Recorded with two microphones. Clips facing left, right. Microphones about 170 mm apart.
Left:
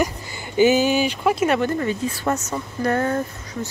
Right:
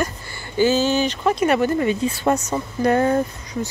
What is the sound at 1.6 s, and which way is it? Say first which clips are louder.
Speech: right 3 dB; 15° right (ahead or behind).